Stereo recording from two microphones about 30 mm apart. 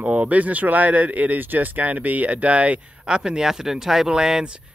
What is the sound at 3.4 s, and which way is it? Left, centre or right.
Speech, centre.